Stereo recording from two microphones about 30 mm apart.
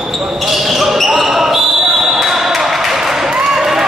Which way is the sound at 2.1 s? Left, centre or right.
Centre.